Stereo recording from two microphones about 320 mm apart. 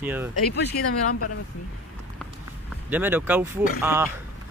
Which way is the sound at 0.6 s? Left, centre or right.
Left.